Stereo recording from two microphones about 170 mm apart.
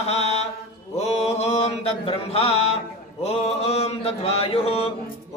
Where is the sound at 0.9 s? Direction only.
40° left (ahead or behind).